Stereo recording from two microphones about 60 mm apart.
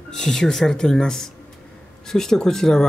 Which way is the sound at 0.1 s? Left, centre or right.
Centre.